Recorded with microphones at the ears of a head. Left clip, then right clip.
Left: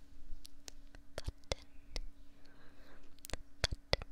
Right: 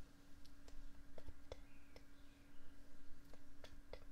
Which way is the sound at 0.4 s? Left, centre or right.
Left.